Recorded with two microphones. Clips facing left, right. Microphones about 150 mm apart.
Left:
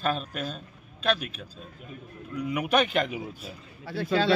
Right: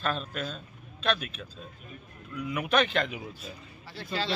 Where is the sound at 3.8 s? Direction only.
60° left (ahead or behind).